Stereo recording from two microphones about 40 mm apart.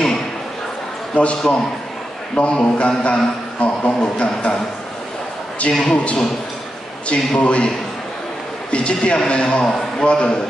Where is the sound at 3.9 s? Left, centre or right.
Left.